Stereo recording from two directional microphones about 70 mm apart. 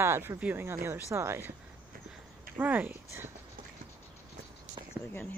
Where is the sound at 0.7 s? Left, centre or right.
Right.